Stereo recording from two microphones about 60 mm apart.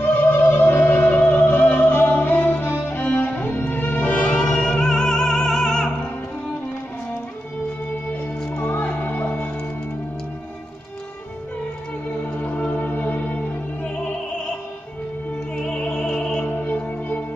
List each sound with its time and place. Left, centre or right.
0.0 s music: left; by 5.9 s centre
8.5 s music: left
12.3 s music: left
15.5 s music: centre
16.4 s music: left